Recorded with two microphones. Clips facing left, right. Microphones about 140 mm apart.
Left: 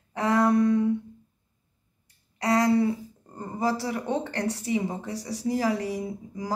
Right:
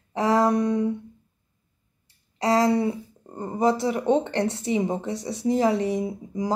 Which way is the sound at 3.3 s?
20° right (ahead or behind).